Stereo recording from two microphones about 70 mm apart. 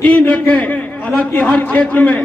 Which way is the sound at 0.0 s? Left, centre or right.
Centre.